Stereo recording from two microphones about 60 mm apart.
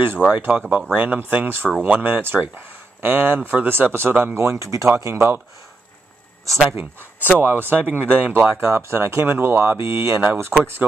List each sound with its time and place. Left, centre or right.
0.3 s speech: right
6.7 s speech: right